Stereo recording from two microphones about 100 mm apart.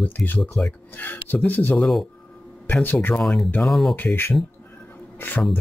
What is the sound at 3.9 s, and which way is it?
Speech, 20° left (ahead or behind).